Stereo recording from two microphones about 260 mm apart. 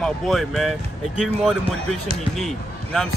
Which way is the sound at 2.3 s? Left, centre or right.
Centre.